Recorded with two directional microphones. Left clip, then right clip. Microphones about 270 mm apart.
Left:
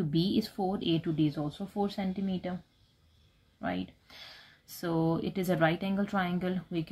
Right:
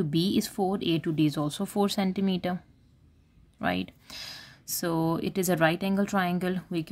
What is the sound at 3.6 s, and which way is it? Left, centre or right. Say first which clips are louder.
Speech: right 6 dB; right.